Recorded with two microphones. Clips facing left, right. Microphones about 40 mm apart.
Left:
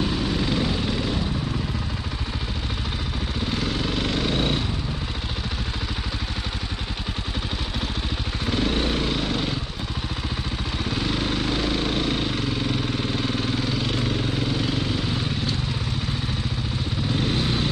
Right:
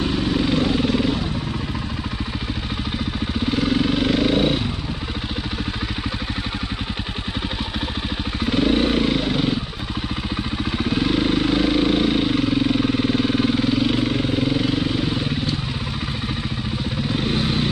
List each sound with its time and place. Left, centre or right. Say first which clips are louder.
0.0 s vehicle: right 4 dB; centre
3.4 s vehicle: right 7 dB; centre
8.5 s vehicle: right 6 dB; centre
10.8 s vehicle: right 6 dB; centre
17.1 s vehicle: right 2 dB; centre